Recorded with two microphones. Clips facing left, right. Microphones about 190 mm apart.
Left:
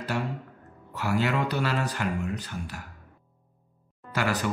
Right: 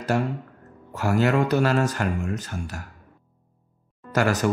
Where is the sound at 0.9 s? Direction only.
45° right (ahead or behind).